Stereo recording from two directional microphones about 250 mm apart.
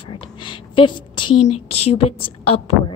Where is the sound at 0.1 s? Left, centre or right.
Centre.